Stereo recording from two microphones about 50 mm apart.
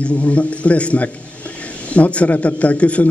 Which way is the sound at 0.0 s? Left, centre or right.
Left.